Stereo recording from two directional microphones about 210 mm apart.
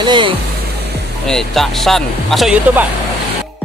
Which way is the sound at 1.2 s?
Centre (ahead or behind).